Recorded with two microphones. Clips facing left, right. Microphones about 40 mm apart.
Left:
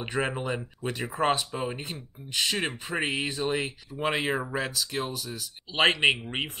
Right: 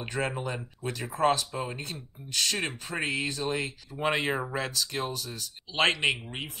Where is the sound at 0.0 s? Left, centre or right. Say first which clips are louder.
Left 2 dB; left.